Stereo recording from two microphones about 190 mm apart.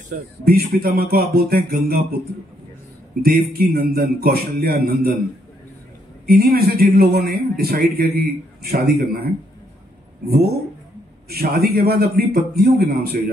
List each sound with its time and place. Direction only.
0.5 s speech: 55° right (ahead or behind)
3.3 s speech: 50° right (ahead or behind)
6.2 s a man's voice: 50° right (ahead or behind)